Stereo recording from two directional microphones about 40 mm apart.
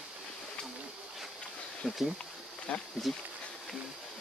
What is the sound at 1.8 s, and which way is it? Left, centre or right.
Speech, centre.